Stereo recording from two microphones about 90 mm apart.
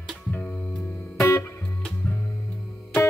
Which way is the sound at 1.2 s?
30° left (ahead or behind).